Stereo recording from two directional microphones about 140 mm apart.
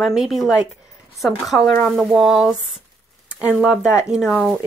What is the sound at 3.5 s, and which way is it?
Speech, 5° right (ahead or behind).